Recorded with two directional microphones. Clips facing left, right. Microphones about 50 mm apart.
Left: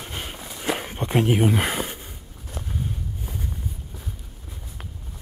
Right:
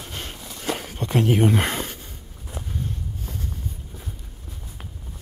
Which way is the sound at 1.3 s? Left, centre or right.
Centre.